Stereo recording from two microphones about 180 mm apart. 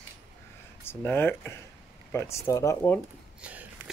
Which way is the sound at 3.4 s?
10° right (ahead or behind).